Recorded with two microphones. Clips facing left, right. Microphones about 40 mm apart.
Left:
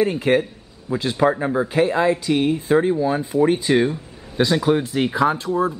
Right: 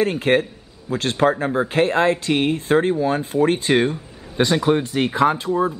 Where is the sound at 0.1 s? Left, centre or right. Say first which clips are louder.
Even; right.